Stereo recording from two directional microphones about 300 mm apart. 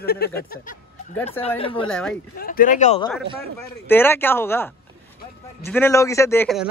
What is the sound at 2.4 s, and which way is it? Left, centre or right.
Speech, left.